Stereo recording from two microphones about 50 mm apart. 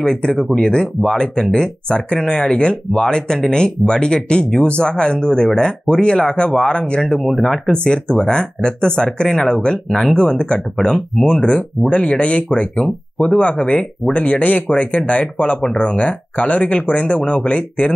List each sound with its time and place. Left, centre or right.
0.0 s speech: centre
7.2 s speech: centre
10.1 s speech: left